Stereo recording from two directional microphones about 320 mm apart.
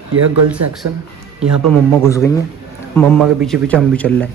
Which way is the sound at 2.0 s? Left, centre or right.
Centre.